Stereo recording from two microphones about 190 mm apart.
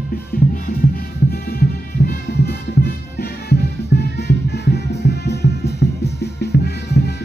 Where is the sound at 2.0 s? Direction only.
55° left (ahead or behind).